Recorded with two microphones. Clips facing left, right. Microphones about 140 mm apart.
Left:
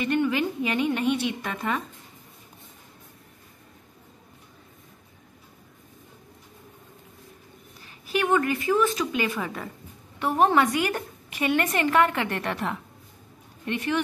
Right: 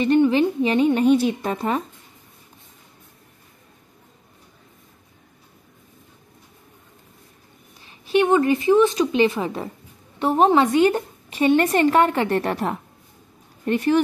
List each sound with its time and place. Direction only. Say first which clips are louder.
0.0 s a woman's voice: right 7 dB; 30° right (ahead or behind)
8.1 s a woman's voice: right 6 dB; 25° right (ahead or behind); by 14.0 s 40° right (ahead or behind)